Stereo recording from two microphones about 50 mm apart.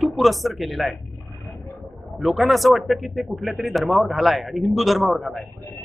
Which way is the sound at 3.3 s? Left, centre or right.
Right.